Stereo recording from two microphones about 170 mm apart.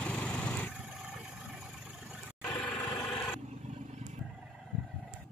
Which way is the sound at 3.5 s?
40° right (ahead or behind).